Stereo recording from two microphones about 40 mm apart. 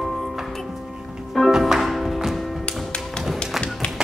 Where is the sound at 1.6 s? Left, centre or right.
Centre.